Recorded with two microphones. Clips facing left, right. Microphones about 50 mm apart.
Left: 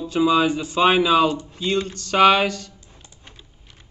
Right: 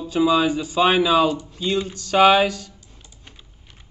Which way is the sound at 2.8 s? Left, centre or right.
Left.